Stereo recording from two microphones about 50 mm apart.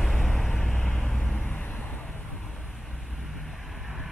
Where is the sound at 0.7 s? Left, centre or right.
Centre.